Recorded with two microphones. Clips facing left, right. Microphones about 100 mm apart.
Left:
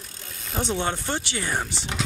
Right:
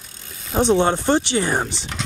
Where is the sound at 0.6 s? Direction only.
65° right (ahead or behind).